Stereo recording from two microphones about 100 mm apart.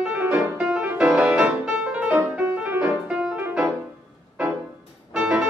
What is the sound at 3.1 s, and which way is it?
Music, 5° right (ahead or behind).